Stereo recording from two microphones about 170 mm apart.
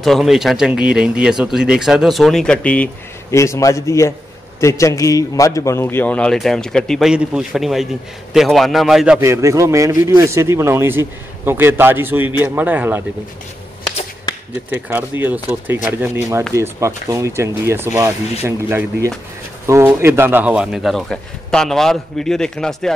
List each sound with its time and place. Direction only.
0.0 s a man's voice: centre (ahead or behind)
9.2 s a man's voice: 15° right (ahead or behind)
14.7 s a man's voice: 10° right (ahead or behind)